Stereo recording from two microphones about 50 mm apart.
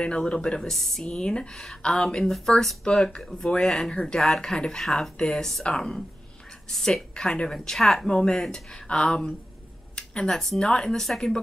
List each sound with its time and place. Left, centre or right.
0.0 s speech: left
0.6 s speech: centre
1.0 s speech: centre
7.2 s speech: centre
9.9 s a sound: centre
10.6 s speech: centre